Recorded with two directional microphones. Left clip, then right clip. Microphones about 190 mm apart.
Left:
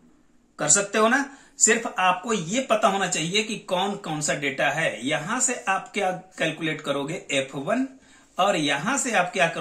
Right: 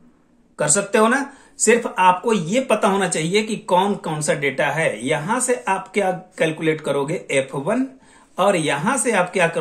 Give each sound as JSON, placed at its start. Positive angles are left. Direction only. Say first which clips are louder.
{"t": 0.6, "sound": "speech", "louder": "right 4 dB", "side_deg": -55}